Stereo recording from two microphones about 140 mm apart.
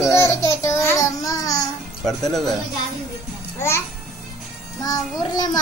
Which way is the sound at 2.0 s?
Centre (ahead or behind).